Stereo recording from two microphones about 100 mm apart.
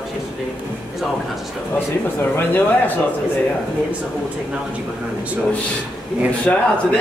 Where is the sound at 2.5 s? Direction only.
20° left (ahead or behind).